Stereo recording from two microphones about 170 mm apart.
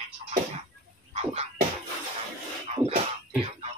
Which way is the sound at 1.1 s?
40° right (ahead or behind).